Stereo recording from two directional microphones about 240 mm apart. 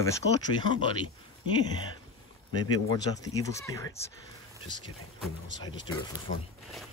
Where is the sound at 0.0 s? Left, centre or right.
Centre.